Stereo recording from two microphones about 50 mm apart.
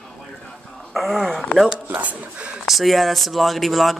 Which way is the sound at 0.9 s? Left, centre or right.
Centre.